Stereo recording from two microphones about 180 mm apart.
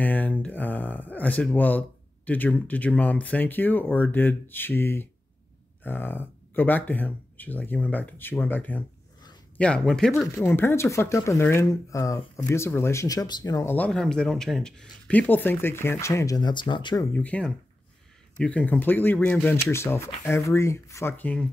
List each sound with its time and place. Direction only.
0.0 s speech: 10° left (ahead or behind)
10.3 s speech: 15° left (ahead or behind)
17.1 s speech: 10° left (ahead or behind)